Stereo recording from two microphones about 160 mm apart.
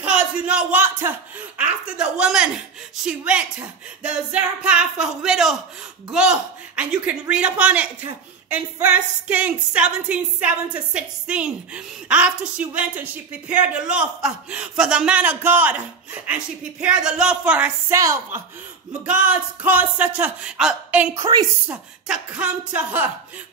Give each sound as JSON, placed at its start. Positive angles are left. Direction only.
{"t": 0.0, "sound": "a woman's voice", "side_deg": -5}
{"t": 17.9, "sound": "a woman's voice", "side_deg": -20}
{"t": 21.1, "sound": "a woman's voice", "side_deg": -25}
{"t": 21.6, "sound": "a woman's voice", "side_deg": -5}